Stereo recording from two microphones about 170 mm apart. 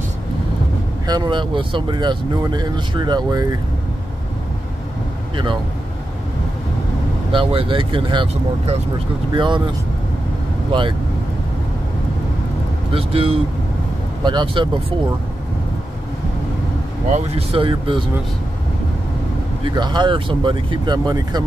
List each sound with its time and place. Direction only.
1.0 s speech: 25° right (ahead or behind)
7.3 s speech: 30° right (ahead or behind)
10.7 s speech: 30° right (ahead or behind)
12.9 s speech: 35° right (ahead or behind)
17.1 s speech: 35° right (ahead or behind)
19.6 s speech: 25° right (ahead or behind)